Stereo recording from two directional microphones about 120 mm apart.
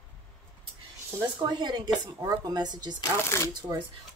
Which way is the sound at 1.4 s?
35° right (ahead or behind).